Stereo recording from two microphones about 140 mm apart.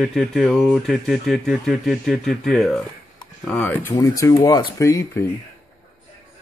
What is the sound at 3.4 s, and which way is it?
Speech, 10° left (ahead or behind).